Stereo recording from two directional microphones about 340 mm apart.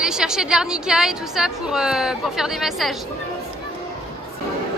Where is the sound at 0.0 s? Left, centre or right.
Centre.